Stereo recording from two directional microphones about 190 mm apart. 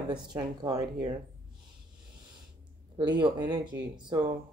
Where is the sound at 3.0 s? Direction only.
25° right (ahead or behind).